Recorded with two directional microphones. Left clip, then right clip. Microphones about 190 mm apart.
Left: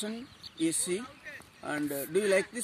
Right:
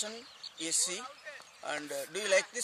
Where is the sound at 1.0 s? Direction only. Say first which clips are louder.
Left 1 dB; 35° right (ahead or behind).